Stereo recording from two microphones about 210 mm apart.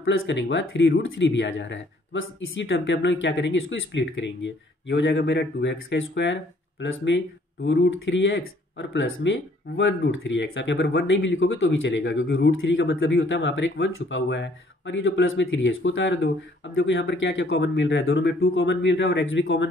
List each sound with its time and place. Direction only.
0.0 s speech: 70° left (ahead or behind)